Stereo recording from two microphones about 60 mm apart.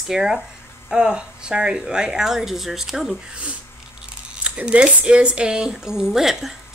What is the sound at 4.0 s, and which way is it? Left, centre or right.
Speech, centre.